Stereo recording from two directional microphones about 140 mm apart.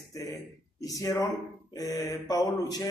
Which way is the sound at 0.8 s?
25° left (ahead or behind).